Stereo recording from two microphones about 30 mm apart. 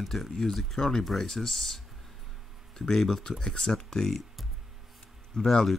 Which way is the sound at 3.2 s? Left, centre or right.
Left.